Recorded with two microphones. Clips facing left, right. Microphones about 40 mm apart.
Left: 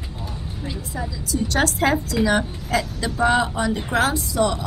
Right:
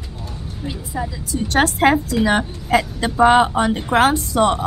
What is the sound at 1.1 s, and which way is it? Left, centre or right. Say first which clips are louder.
A woman's voice: right 2 dB; right.